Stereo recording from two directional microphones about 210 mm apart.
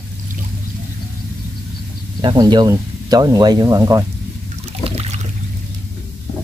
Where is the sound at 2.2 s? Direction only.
20° right (ahead or behind).